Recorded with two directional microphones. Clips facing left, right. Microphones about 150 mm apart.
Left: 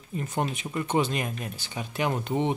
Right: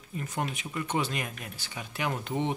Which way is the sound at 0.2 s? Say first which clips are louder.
Left 4 dB; 30° left (ahead or behind).